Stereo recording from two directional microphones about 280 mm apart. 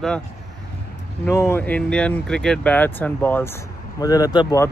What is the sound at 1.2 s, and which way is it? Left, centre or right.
A man's voice, centre.